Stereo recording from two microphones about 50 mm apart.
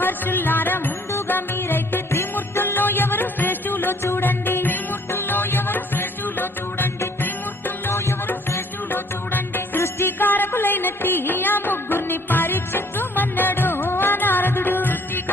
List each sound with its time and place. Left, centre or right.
0.0 s music: left
8.9 s music: left